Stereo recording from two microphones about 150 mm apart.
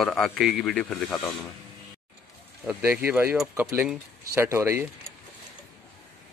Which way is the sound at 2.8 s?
10° right (ahead or behind).